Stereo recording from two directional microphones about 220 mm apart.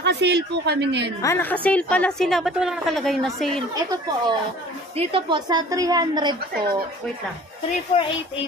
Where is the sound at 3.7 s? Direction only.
15° right (ahead or behind).